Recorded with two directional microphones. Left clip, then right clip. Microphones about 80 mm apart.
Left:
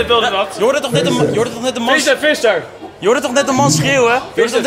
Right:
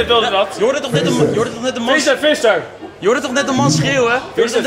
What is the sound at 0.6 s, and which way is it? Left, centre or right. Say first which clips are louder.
A man's voice: left 2 dB; left.